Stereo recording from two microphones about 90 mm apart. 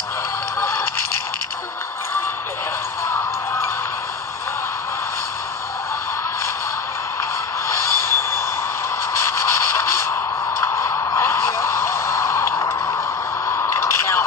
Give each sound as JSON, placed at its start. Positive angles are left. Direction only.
{"t": 0.6, "sound": "music", "side_deg": 30}
{"t": 7.6, "sound": "vehicle", "side_deg": 30}
{"t": 9.2, "sound": "a sound", "side_deg": 35}